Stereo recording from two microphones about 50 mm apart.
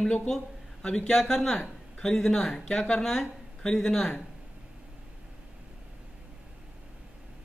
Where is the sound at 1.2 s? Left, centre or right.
Centre.